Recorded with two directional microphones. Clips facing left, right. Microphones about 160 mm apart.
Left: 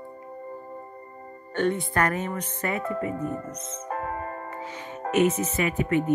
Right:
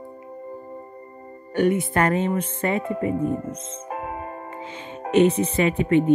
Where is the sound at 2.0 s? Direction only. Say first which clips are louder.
Right 5 dB; 25° right (ahead or behind).